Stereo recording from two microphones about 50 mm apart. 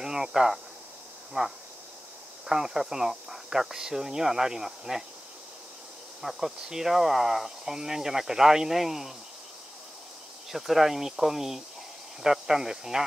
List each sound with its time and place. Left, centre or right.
0.0 s speech: centre
1.3 s speech: right
2.4 s speech: centre
6.2 s speech: centre
10.5 s speech: centre